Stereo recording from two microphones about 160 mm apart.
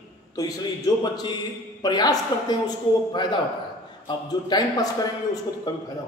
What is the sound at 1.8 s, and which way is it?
A man's voice, 25° left (ahead or behind).